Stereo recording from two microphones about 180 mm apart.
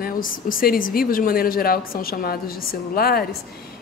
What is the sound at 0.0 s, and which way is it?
A woman's voice, 50° left (ahead or behind).